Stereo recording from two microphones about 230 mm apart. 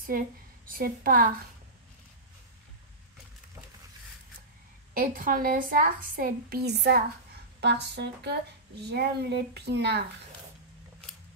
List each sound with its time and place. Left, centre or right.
0.7 s a woman's voice: right
4.9 s a woman's voice: right